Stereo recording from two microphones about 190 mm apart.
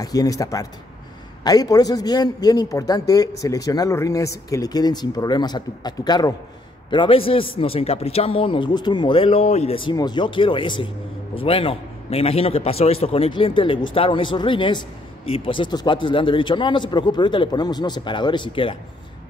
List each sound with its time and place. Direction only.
0.0 s a man's voice: 20° left (ahead or behind)